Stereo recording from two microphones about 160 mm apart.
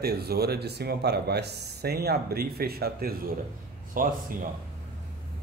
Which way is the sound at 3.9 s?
55° right (ahead or behind).